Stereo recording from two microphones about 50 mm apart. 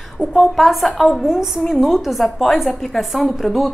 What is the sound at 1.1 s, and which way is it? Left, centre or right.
A woman's voice, centre.